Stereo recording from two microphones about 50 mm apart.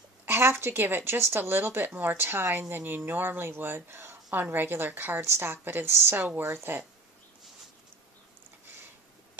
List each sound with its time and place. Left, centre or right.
0.2 s speech: right
6.2 s speech: right
6.5 s speech: right